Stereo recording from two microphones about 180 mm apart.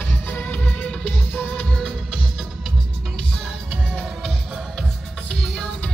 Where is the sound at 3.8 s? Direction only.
Centre (ahead or behind).